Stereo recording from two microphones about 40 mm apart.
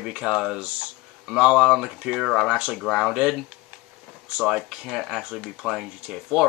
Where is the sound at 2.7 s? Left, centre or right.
Centre.